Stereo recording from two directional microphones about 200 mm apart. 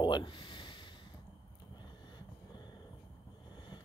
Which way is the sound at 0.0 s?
25° left (ahead or behind).